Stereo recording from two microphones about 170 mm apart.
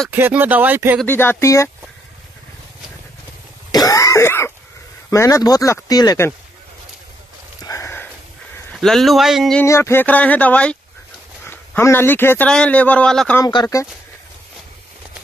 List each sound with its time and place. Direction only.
0.1 s speech: 10° right (ahead or behind)
1.0 s a man's voice: 15° left (ahead or behind)
3.7 s throat clearing: 20° left (ahead or behind)
5.1 s speech: 20° left (ahead or behind)
7.6 s a sound: 15° left (ahead or behind)
8.7 s speech: centre (ahead or behind)
9.6 s a man's voice: 15° left (ahead or behind)
13.4 s speech: 20° left (ahead or behind)